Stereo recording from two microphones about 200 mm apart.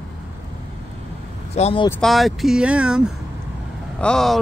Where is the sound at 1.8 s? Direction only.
5° left (ahead or behind).